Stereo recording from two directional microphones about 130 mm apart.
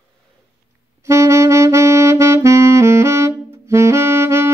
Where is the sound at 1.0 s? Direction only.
20° right (ahead or behind).